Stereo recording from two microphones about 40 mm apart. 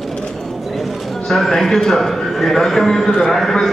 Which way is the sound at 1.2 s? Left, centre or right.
Centre.